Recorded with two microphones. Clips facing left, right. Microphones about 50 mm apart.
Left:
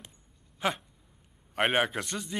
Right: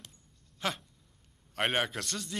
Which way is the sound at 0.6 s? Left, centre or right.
Centre.